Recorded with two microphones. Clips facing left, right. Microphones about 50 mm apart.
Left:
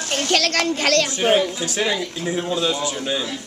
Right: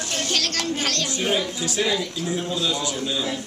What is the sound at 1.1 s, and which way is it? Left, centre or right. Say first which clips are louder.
Speech: left 6 dB; left.